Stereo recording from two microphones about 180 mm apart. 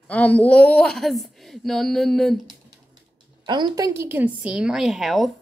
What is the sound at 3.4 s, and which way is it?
A woman's voice, 25° right (ahead or behind).